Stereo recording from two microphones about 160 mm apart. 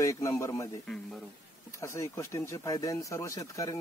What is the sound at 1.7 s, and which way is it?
Speech, 20° left (ahead or behind).